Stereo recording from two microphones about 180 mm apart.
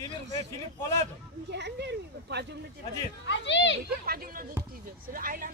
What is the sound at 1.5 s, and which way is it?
Speech, 70° right (ahead or behind).